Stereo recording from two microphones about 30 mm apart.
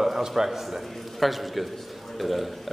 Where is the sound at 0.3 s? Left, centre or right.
Centre.